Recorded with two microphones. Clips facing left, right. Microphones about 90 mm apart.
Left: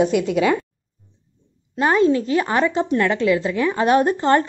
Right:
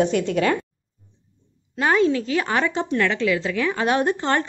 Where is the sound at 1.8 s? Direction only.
30° left (ahead or behind).